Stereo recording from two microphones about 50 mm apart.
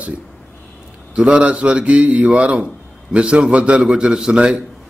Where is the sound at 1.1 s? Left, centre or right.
Right.